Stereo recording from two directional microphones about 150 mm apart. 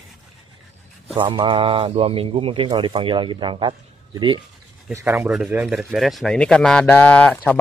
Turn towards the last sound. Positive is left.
turn(degrees=10)  # may be behind; listen again after turning